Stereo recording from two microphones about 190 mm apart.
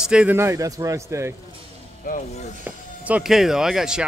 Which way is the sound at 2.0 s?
45° left (ahead or behind).